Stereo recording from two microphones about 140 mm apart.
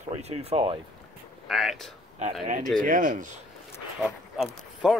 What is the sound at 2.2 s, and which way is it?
Speech, 50° right (ahead or behind).